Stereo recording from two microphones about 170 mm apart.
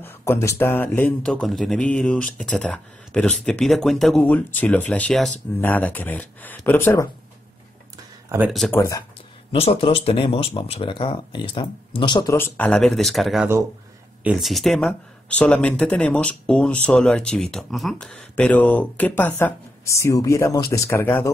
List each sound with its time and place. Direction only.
0.0 s speech: 15° left (ahead or behind)
8.5 s speech: centre (ahead or behind)
8.7 s speech: 15° left (ahead or behind)
9.5 s speech: 35° left (ahead or behind)
12.4 s speech: 10° left (ahead or behind)